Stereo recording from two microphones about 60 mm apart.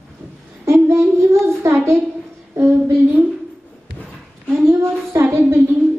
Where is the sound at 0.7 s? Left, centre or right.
Right.